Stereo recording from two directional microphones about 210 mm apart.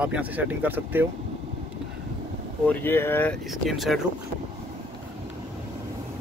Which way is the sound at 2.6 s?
10° left (ahead or behind).